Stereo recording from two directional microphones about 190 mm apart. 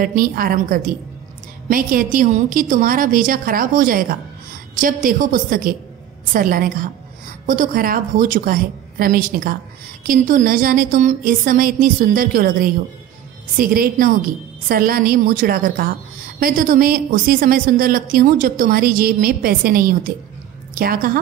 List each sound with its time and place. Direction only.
0.0 s a woman's voice: 50° right (ahead or behind)